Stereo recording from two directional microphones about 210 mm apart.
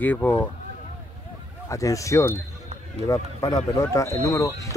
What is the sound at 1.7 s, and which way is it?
Speech, 15° left (ahead or behind).